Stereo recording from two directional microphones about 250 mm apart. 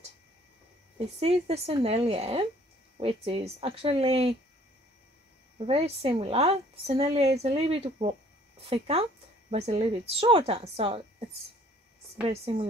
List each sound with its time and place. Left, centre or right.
0.9 s a woman's voice: right
5.6 s a woman's voice: right
12.3 s a woman's voice: right